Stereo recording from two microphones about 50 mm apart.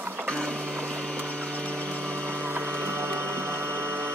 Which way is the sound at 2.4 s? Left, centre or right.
Right.